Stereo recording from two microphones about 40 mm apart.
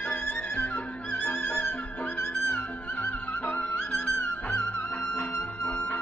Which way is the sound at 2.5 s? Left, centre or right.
Left.